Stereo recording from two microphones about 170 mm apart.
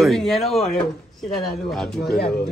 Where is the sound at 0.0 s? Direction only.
Centre (ahead or behind).